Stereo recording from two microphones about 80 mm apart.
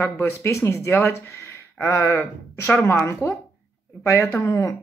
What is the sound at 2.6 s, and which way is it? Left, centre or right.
Speech, left.